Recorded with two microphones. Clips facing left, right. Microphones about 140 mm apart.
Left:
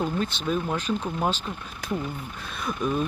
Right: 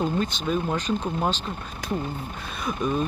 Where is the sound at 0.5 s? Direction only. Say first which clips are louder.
Right 1 dB; 5° left (ahead or behind).